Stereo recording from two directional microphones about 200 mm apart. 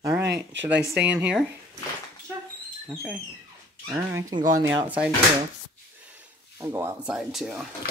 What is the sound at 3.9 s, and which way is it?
Speech, 15° right (ahead or behind).